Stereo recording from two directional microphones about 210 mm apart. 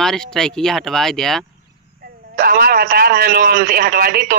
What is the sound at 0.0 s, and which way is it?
Speech, centre (ahead or behind).